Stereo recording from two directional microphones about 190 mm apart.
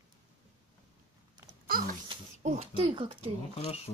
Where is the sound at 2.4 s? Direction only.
35° right (ahead or behind).